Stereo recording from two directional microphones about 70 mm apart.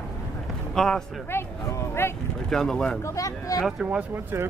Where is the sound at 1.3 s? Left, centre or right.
Left.